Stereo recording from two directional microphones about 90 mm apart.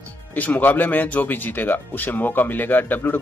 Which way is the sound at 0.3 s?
20° left (ahead or behind).